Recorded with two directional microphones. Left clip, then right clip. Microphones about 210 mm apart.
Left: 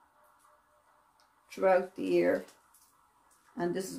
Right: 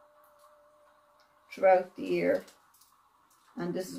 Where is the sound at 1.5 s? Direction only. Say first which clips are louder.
Right 3 dB; 50° left (ahead or behind).